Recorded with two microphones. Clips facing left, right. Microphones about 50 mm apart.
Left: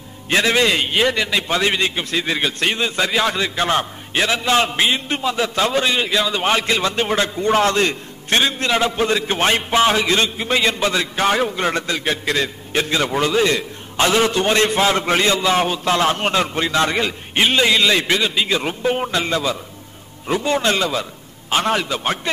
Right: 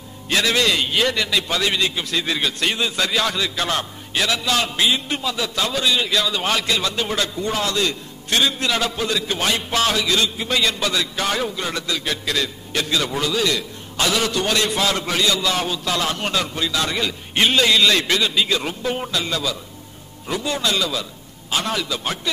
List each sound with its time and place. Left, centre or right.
0.3 s a man's voice: left
6.0 s a man's voice: left
17.4 s a man's voice: centre